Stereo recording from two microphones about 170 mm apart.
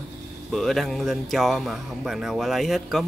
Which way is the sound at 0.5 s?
Centre (ahead or behind).